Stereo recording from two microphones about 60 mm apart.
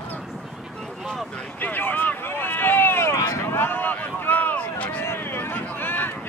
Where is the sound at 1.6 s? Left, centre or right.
Left.